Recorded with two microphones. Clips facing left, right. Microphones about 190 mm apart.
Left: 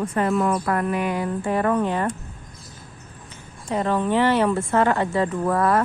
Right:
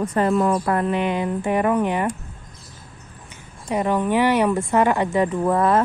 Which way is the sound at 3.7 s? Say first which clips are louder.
Right 1 dB; 15° right (ahead or behind).